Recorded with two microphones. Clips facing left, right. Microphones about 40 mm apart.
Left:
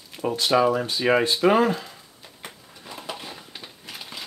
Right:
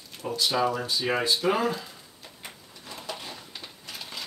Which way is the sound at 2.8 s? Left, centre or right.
Centre.